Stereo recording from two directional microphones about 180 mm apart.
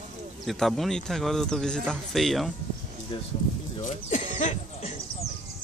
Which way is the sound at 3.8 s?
45° left (ahead or behind).